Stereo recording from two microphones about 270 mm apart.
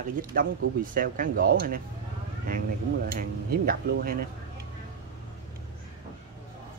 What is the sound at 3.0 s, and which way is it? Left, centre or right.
Speech, right.